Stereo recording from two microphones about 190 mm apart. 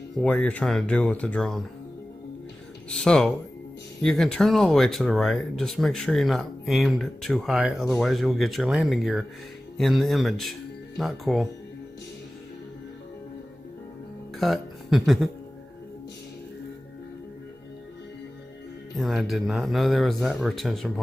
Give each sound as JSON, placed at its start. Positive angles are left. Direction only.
{"t": 0.1, "sound": "speech", "side_deg": 5}
{"t": 2.9, "sound": "speech", "side_deg": 5}
{"t": 14.4, "sound": "speech", "side_deg": 0}
{"t": 18.9, "sound": "speech", "side_deg": 0}